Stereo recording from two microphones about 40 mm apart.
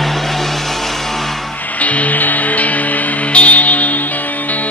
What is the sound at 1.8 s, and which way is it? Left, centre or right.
Music, left.